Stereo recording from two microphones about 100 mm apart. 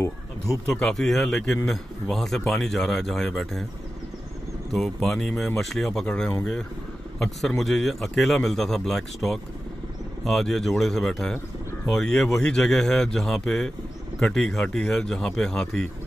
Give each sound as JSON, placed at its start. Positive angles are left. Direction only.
{"t": 0.7, "sound": "a man's voice", "side_deg": 5}
{"t": 4.7, "sound": "a man's voice", "side_deg": 0}